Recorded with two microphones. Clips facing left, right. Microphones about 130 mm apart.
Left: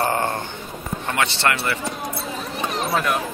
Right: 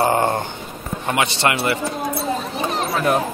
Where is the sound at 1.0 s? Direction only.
15° right (ahead or behind).